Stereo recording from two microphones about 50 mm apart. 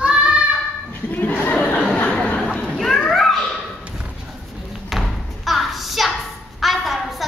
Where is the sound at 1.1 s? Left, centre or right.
Left.